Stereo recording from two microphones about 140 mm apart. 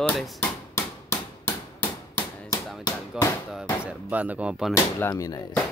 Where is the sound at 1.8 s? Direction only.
15° left (ahead or behind).